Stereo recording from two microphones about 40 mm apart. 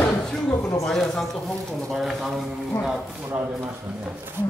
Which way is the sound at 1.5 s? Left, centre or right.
Left.